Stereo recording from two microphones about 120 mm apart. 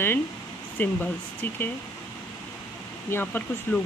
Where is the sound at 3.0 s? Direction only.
20° left (ahead or behind).